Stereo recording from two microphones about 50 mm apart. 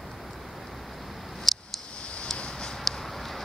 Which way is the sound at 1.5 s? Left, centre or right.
Centre.